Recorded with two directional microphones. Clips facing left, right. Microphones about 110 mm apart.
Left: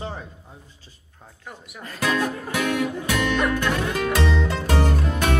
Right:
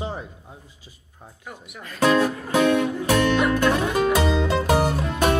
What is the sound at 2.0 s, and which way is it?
Music, 30° right (ahead or behind).